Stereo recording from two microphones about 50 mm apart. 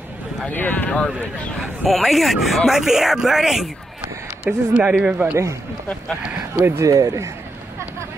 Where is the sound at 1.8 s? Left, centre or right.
Centre.